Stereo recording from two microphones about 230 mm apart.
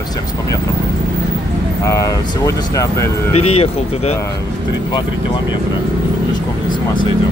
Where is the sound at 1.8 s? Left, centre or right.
Centre.